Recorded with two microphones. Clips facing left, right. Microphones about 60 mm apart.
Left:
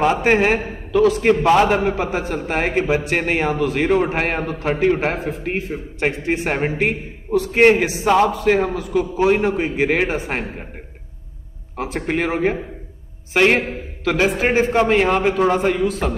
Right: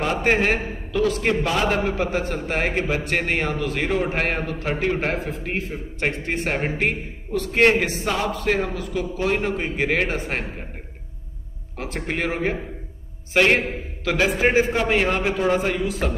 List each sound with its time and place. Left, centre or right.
0.0 s a man's voice: centre
1.4 s a man's voice: left
1.7 s a man's voice: centre
11.8 s a man's voice: centre